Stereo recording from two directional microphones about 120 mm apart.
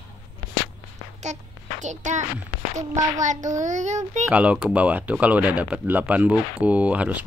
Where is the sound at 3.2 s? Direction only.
90° right.